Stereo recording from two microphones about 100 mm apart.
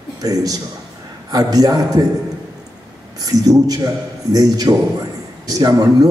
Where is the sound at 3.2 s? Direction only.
40° right (ahead or behind).